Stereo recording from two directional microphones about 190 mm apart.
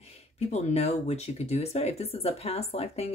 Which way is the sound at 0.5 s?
35° left (ahead or behind).